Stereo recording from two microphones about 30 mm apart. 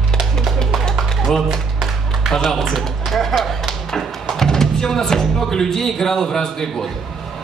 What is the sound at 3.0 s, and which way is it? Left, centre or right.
Tap, centre.